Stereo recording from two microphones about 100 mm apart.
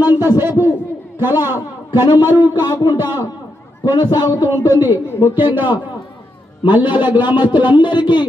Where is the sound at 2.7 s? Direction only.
40° left (ahead or behind).